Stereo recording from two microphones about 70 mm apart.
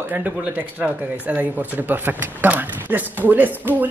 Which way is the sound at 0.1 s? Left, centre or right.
Right.